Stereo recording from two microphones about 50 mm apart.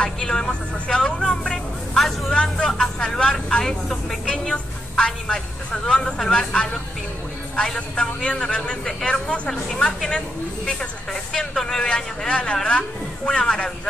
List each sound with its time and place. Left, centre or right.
0.0 s vehicle: centre
2.0 s vehicle: centre
2.3 s vehicle: centre
5.9 s a man's voice: centre